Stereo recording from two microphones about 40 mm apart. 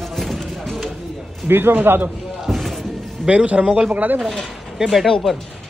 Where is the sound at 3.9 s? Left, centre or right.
Right.